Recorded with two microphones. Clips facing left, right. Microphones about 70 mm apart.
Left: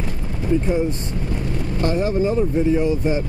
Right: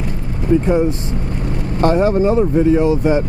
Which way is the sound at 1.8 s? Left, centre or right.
Right.